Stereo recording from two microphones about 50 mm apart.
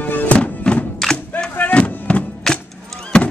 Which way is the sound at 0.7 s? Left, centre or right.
Centre.